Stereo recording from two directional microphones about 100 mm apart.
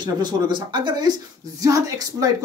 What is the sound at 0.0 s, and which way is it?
Speech, 50° right (ahead or behind).